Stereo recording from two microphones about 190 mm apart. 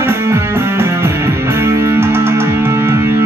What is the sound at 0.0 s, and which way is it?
Music, 15° right (ahead or behind).